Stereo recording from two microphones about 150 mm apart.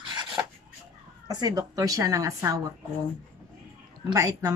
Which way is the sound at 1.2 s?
25° right (ahead or behind).